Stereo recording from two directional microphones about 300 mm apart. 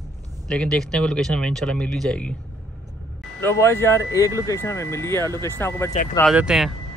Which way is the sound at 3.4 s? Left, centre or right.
Centre.